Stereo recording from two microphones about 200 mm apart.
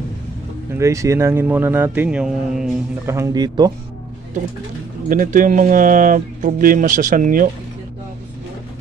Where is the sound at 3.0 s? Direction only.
15° right (ahead or behind).